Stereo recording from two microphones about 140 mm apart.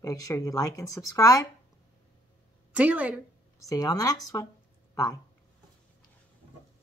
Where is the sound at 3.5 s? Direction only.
25° left (ahead or behind).